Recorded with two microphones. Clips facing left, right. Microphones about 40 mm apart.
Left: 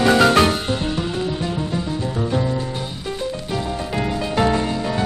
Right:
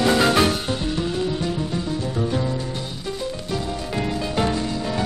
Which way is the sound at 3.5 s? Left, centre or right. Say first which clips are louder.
Left 2 dB; centre.